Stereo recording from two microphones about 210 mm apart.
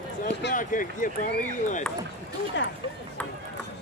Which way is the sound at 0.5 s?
40° left (ahead or behind).